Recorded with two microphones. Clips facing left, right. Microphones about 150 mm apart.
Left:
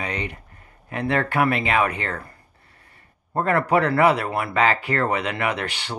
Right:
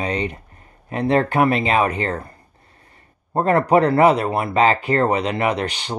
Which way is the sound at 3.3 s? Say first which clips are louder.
Right 4 dB; 25° right (ahead or behind).